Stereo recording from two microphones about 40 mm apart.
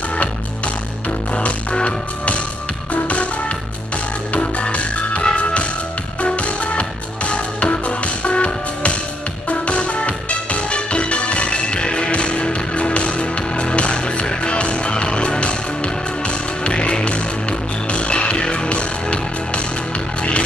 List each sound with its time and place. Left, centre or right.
1.3 s music: left